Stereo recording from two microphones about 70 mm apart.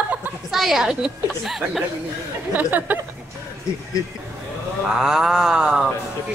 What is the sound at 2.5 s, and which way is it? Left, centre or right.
Speech, right.